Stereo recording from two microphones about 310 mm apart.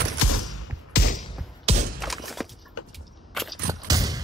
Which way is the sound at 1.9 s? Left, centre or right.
Centre.